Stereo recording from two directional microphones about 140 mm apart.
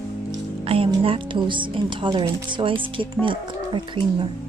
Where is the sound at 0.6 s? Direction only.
40° right (ahead or behind).